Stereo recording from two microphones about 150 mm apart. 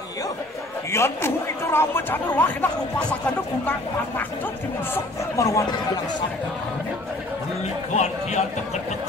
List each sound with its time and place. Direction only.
0.9 s speech: 15° left (ahead or behind)
4.9 s speech: 20° left (ahead or behind)
7.9 s a man's voice: 50° left (ahead or behind)